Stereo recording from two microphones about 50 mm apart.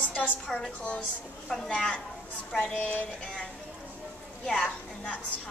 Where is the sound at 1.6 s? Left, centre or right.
Centre.